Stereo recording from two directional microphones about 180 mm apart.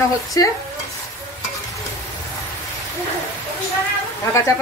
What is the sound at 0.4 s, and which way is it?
Stir, 20° left (ahead or behind).